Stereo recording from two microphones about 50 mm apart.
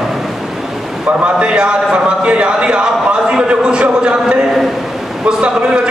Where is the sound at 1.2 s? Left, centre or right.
Right.